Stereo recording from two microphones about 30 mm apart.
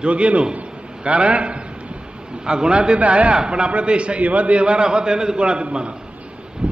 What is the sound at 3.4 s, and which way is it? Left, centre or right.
Speech, right.